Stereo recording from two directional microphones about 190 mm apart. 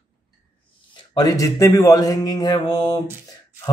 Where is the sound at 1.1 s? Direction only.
20° left (ahead or behind).